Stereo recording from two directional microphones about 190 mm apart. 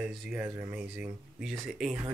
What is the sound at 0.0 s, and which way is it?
Speech, 5° right (ahead or behind).